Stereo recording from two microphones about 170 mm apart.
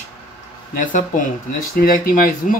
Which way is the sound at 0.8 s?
50° left (ahead or behind).